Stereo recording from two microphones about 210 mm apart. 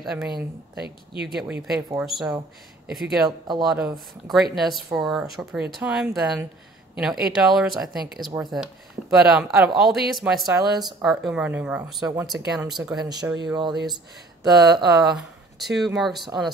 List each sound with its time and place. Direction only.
0.0 s speech: centre (ahead or behind)
1.3 s speech: 5° right (ahead or behind)
3.3 s speech: 20° right (ahead or behind)
3.6 s speech: centre (ahead or behind)
13.6 s speech: 20° right (ahead or behind)
15.1 s speech: centre (ahead or behind)